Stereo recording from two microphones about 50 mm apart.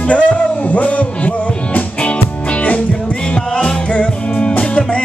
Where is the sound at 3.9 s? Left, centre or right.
Left.